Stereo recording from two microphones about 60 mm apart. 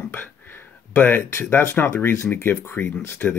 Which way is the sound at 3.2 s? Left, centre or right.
Left.